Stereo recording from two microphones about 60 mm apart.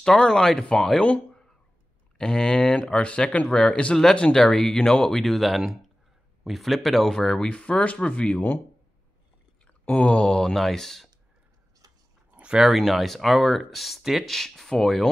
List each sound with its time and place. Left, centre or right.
0.0 s speech: centre
9.7 s speech: left; by 11.1 s centre
12.4 s a sound: centre
12.7 s speech: centre